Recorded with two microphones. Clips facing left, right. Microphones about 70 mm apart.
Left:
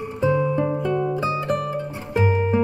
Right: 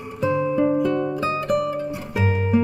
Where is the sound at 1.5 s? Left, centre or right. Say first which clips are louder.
Right 3 dB; centre.